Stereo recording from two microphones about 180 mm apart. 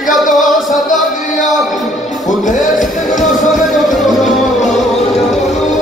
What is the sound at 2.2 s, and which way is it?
Music, 45° left (ahead or behind).